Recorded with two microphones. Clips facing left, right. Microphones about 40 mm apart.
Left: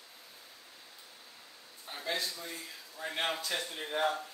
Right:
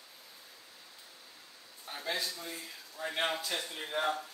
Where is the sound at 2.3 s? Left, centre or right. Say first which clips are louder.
Even; centre.